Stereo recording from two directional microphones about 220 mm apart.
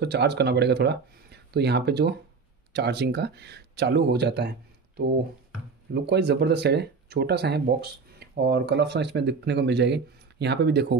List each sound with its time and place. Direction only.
0.0 s speech: 50° right (ahead or behind)